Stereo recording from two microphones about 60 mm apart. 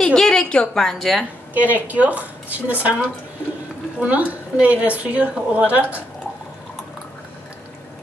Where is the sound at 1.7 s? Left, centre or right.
Right.